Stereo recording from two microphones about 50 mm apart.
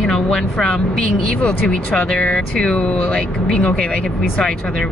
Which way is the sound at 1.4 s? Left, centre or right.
Left.